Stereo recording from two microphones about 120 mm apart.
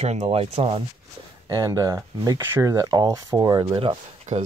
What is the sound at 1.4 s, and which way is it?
Speech, 30° right (ahead or behind).